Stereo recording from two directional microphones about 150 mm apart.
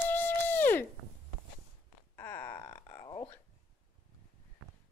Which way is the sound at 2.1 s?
15° left (ahead or behind).